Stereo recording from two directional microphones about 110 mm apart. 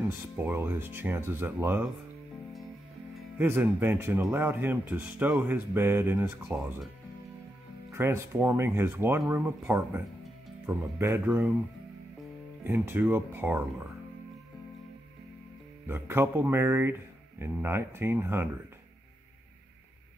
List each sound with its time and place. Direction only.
0.4 s speech: 20° right (ahead or behind)
3.3 s speech: 20° right (ahead or behind)
7.9 s speech: 25° right (ahead or behind)
12.6 s speech: 20° right (ahead or behind)
15.9 s speech: 20° right (ahead or behind)